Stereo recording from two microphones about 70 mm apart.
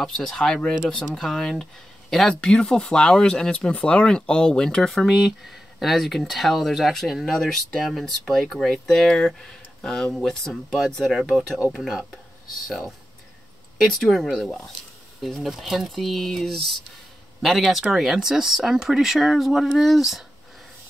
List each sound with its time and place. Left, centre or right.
0.0 s speech: centre